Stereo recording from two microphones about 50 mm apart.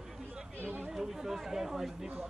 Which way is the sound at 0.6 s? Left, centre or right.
Right.